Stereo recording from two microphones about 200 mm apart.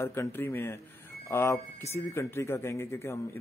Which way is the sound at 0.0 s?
15° left (ahead or behind).